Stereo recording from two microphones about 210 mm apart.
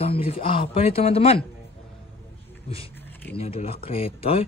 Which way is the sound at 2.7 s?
30° left (ahead or behind).